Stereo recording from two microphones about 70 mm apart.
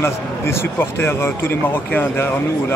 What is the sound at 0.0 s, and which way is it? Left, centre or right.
Speech, left.